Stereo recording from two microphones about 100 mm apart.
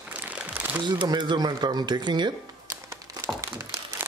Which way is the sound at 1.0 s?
45° right (ahead or behind).